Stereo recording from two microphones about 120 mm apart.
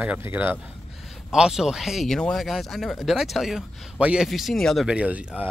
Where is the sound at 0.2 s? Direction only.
20° right (ahead or behind).